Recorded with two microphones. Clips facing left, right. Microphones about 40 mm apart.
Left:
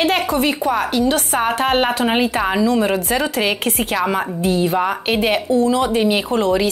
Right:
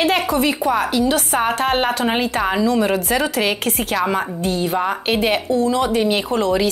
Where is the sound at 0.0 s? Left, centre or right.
Centre.